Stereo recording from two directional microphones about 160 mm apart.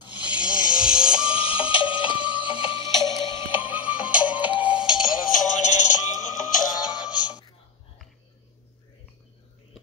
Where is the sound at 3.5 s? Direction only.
10° right (ahead or behind).